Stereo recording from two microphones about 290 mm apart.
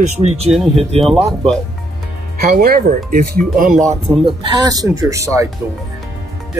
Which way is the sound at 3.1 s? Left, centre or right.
Right.